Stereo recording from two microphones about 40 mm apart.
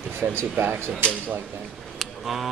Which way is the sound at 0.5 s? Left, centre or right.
Right.